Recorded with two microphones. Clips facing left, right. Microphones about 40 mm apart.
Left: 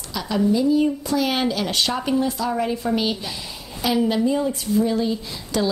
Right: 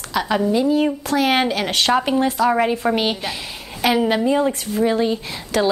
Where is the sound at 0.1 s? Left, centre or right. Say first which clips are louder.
Right 2 dB; right.